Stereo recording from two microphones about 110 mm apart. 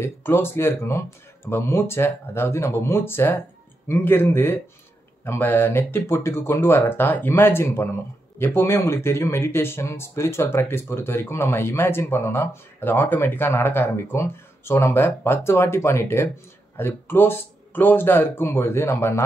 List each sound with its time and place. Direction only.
0.0 s speech: 20° left (ahead or behind)